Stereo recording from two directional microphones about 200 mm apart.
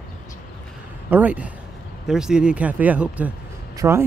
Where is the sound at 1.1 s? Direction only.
5° right (ahead or behind).